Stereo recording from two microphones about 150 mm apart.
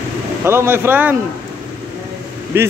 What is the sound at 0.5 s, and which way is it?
Speech, 15° right (ahead or behind).